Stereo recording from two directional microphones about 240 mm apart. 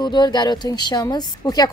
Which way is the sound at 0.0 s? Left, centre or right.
Centre.